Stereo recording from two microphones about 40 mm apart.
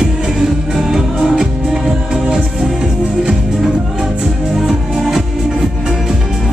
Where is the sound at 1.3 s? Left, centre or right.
Centre.